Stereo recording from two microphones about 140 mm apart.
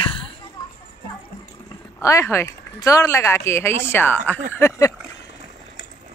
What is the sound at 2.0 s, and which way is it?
Speech, 20° left (ahead or behind).